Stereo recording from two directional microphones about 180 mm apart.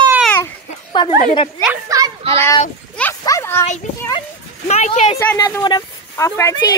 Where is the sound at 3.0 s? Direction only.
15° left (ahead or behind).